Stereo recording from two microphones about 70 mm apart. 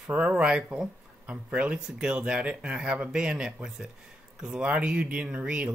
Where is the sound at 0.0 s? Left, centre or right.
Centre.